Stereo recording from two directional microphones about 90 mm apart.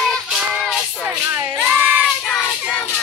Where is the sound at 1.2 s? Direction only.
30° right (ahead or behind).